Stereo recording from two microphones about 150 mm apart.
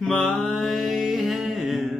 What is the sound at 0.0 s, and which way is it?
Music, centre (ahead or behind).